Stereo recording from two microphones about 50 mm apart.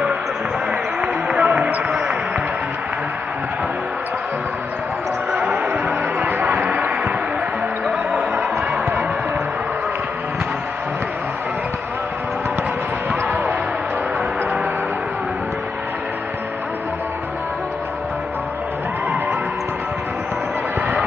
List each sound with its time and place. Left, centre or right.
1.0 s music: right
1.9 s basketball bounce: centre
5.3 s a sound: right
7.8 s music: centre